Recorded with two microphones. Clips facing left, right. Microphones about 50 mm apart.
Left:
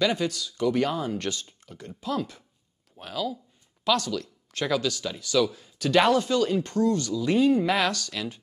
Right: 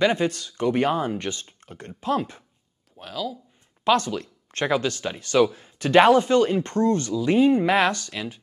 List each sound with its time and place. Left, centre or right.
0.0 s speech: right
1.1 s speech: right
1.4 s speech: right
3.0 s speech: centre
3.8 s speech: right